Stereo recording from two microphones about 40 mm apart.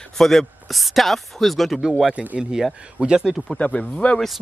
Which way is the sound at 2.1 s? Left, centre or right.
Right.